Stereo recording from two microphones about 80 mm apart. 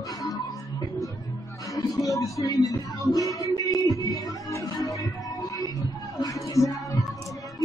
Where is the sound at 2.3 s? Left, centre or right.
Left.